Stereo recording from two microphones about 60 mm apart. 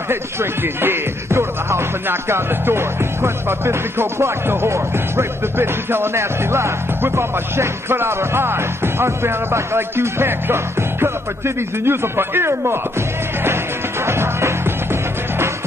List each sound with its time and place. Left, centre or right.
0.1 s speech: right
14.0 s music: right